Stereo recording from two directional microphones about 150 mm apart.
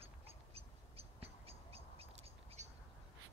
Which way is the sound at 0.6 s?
40° right (ahead or behind).